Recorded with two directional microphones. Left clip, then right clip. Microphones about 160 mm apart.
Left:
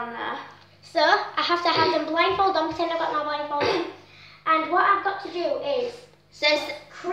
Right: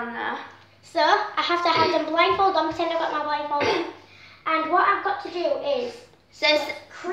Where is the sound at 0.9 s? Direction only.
15° left (ahead or behind).